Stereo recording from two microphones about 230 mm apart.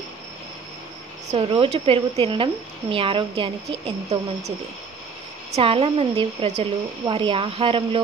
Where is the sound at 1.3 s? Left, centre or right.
Right.